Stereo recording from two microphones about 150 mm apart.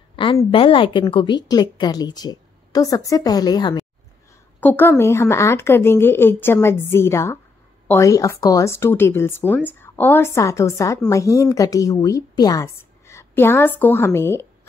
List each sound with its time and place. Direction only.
0.1 s a sound: 35° left (ahead or behind)
0.5 s a woman's voice: 35° left (ahead or behind)
4.6 s a woman's voice: 10° left (ahead or behind)